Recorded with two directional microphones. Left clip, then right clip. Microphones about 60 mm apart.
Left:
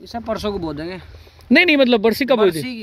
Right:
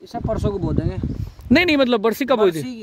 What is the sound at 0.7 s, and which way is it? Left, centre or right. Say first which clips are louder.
Speech: right 2 dB; centre.